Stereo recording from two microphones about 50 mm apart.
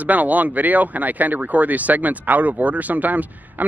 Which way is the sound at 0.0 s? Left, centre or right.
Right.